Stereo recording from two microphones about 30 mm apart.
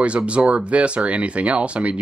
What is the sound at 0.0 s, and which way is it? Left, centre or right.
Speech, right.